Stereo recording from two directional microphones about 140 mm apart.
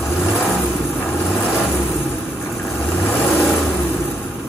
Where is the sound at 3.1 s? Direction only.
5° left (ahead or behind).